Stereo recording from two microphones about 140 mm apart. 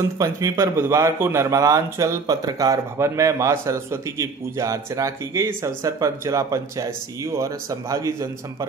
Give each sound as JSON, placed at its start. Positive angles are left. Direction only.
{"t": 0.2, "sound": "a man's voice", "side_deg": -20}